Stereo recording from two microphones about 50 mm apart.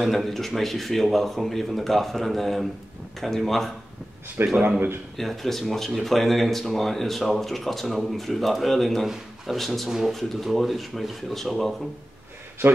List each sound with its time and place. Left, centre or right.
0.0 s speech: centre
4.6 s a man's voice: right
5.1 s speech: centre
12.6 s a man's voice: right